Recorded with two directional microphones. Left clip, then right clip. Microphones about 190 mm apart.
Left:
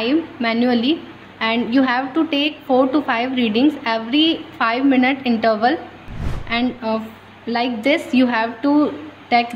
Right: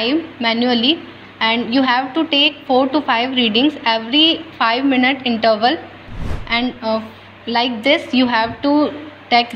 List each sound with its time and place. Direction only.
0.0 s a woman's voice: 15° left (ahead or behind)